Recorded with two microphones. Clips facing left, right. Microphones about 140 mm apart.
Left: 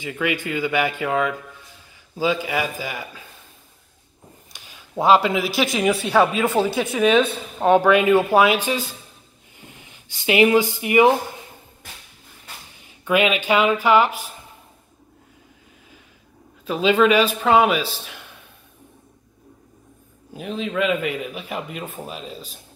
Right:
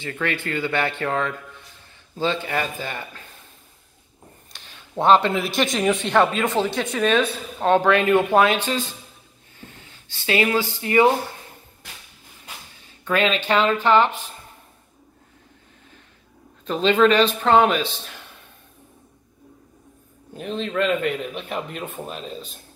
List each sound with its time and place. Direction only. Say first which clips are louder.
0.0 s a man's voice: left 2 dB; 10° left (ahead or behind)
4.5 s a man's voice: even; 10° left (ahead or behind)
13.0 s a man's voice: left 2 dB; 10° left (ahead or behind)
16.6 s a man's voice: even; 5° left (ahead or behind)
20.3 s a man's voice: even; 5° left (ahead or behind)